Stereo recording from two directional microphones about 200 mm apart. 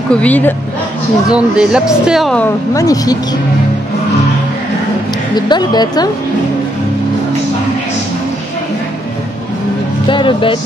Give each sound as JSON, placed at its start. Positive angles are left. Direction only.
{"t": 0.1, "sound": "speech", "side_deg": 5}
{"t": 1.3, "sound": "speech", "side_deg": -5}
{"t": 2.7, "sound": "speech", "side_deg": 15}
{"t": 5.3, "sound": "speech", "side_deg": 20}
{"t": 10.0, "sound": "speech", "side_deg": 25}